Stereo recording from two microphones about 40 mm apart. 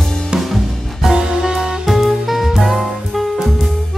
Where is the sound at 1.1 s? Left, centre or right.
Centre.